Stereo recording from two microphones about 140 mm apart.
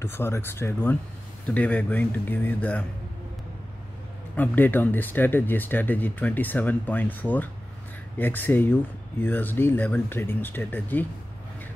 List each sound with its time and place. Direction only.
0.0 s speech: 15° left (ahead or behind)
4.4 s speech: 15° left (ahead or behind)